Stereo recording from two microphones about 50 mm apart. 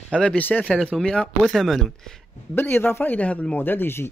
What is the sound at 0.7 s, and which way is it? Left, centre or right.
Speech, centre.